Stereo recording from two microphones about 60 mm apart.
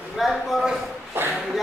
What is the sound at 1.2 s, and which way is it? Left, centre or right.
Speech, right.